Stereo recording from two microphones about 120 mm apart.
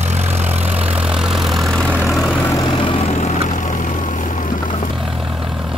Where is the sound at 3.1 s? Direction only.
75° left (ahead or behind).